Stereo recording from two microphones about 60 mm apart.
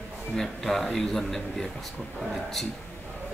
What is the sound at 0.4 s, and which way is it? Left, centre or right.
A man's voice, centre.